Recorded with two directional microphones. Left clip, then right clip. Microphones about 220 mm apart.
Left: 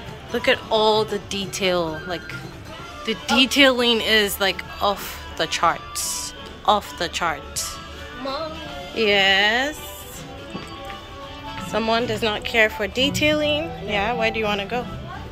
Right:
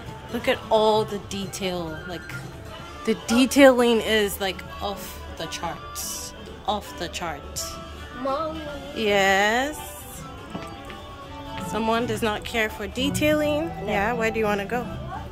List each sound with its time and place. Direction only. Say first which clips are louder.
0.3 s speech: left 2 dB; 10° right (ahead or behind)
3.1 s speech: left 4 dB; 20° right (ahead or behind); by 7.6 s 5° right (ahead or behind)
8.9 s speech: left 3 dB; 15° right (ahead or behind)
11.7 s speech: left 3 dB; 10° right (ahead or behind)